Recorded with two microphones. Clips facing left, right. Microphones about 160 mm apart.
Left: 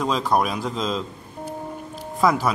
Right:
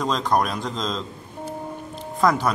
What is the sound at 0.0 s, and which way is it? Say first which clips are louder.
Speech: left 1 dB; 5° left (ahead or behind).